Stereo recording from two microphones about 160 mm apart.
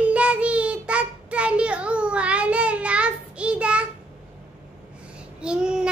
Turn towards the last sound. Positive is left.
turn(degrees=-5)  # may be behind; listen again after turning